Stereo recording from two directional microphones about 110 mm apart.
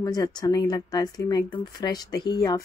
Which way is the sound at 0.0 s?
35° left (ahead or behind).